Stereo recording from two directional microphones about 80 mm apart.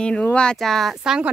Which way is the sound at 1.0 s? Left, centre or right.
Centre.